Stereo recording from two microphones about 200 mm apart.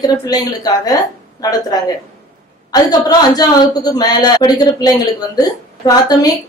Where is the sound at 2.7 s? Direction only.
20° left (ahead or behind).